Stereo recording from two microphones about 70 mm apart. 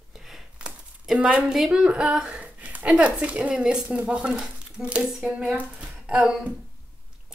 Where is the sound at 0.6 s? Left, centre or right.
Centre.